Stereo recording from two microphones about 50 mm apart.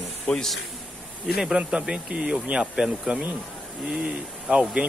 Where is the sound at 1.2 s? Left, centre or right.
Centre.